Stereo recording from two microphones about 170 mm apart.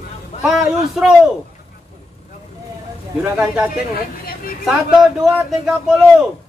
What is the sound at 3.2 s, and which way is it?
A man's voice, 5° right (ahead or behind).